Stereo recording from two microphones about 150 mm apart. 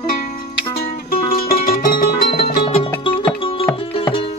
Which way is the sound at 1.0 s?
75° left (ahead or behind).